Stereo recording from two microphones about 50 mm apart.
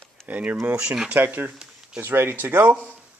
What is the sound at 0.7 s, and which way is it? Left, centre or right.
Speech, centre.